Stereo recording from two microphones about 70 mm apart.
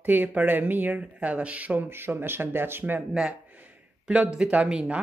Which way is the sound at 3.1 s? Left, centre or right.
Centre.